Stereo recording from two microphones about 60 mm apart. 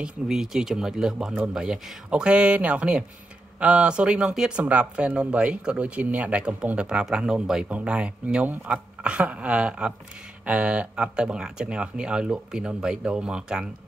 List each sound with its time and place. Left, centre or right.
0.0 s speech: centre
2.0 s speech: centre